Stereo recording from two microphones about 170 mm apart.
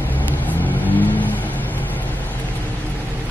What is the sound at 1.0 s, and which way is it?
Vehicle, 10° left (ahead or behind).